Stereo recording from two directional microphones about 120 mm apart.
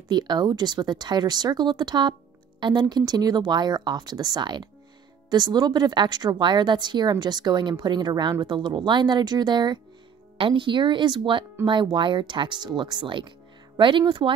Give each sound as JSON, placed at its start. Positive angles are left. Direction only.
{"t": 0.1, "sound": "speech", "side_deg": -35}